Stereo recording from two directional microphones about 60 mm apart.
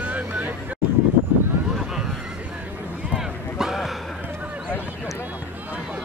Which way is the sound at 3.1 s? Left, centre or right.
Centre.